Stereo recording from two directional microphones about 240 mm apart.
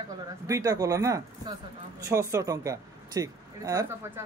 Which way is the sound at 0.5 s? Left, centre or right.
Centre.